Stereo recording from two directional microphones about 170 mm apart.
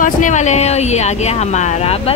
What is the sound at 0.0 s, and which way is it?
Speech, 45° left (ahead or behind).